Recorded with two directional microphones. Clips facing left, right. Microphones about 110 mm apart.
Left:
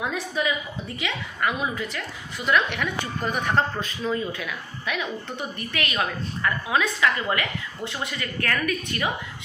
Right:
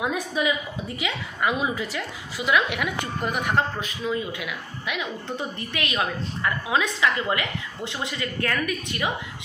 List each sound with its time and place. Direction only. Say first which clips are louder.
0.0 s a woman's voice: right 2 dB; 15° right (ahead or behind)